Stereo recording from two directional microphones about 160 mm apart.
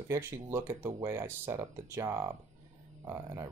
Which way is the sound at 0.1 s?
15° right (ahead or behind).